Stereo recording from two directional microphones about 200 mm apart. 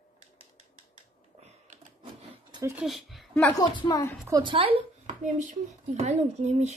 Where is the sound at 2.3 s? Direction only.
20° right (ahead or behind).